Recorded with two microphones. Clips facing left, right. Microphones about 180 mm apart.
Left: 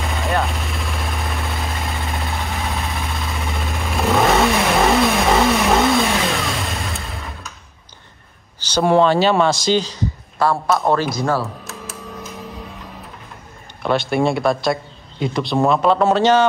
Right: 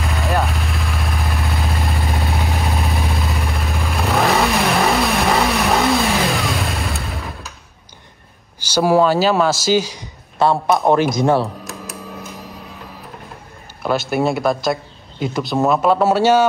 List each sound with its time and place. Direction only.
0.2 s vehicle: centre (ahead or behind)
8.5 s speech: 10° right (ahead or behind)
10.4 s a man's voice: 20° right (ahead or behind)
13.8 s speech: 5° right (ahead or behind)